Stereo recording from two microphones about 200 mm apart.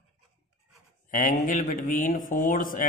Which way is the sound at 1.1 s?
40° left (ahead or behind).